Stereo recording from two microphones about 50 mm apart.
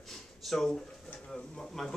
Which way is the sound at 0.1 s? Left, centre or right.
Centre.